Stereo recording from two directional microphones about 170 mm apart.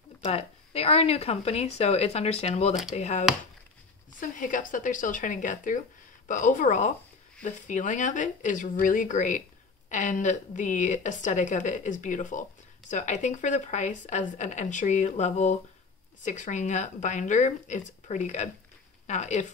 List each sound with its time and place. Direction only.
0.2 s speech: 40° left (ahead or behind)
2.7 s speech: centre (ahead or behind)
3.0 s speech: 40° left (ahead or behind)